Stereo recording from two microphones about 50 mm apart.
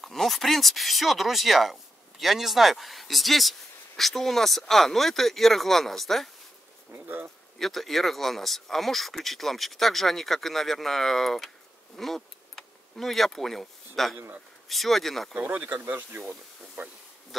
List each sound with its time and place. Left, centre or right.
0.0 s speech: centre
7.5 s speech: centre
15.3 s speech: right
15.8 s speech: right